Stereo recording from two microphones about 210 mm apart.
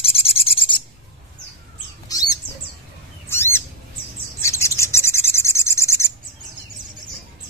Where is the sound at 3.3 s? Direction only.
10° left (ahead or behind).